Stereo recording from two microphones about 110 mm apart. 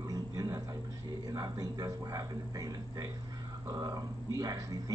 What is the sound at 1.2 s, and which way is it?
Speech, 35° right (ahead or behind).